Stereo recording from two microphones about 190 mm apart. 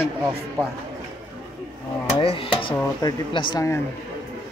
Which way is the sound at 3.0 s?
25° left (ahead or behind).